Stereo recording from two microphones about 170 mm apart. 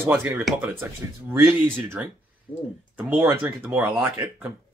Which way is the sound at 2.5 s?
10° left (ahead or behind).